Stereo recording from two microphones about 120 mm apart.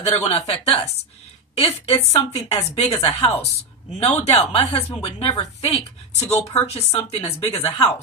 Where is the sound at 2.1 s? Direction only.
55° left (ahead or behind).